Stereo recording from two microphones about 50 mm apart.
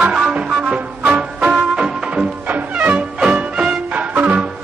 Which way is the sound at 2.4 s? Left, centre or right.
Right.